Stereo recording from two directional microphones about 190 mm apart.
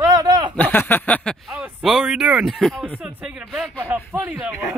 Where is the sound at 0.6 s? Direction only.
10° left (ahead or behind).